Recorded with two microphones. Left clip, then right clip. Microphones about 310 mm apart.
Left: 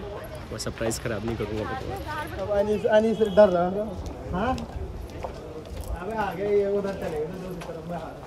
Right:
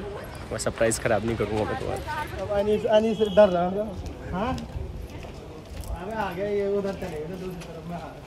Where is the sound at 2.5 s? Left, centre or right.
Right.